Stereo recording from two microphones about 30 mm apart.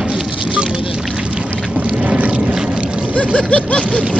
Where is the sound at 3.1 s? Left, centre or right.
Left.